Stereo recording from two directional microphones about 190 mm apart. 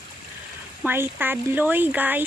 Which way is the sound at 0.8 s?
10° right (ahead or behind).